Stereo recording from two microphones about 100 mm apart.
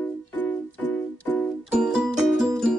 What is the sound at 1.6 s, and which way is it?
Music, 5° right (ahead or behind).